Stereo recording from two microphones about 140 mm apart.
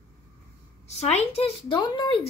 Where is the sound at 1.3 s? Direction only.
45° left (ahead or behind).